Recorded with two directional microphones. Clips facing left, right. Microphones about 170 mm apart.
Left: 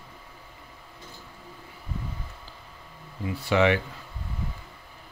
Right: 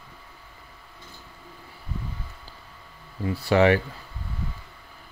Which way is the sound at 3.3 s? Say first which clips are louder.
Right 3 dB; 40° right (ahead or behind).